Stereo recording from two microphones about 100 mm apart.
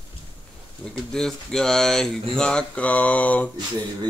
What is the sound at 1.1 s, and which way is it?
Speech, 5° left (ahead or behind).